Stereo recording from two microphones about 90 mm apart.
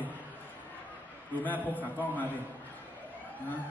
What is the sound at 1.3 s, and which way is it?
A man's voice, 20° left (ahead or behind).